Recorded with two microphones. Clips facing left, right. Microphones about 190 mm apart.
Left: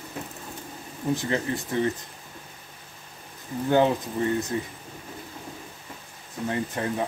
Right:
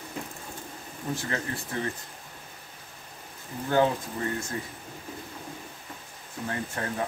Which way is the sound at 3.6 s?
20° left (ahead or behind).